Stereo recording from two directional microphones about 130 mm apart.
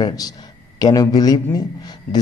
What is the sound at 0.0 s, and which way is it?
A man's voice, 30° left (ahead or behind).